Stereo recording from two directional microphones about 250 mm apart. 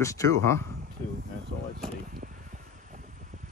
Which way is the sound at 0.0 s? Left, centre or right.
Centre.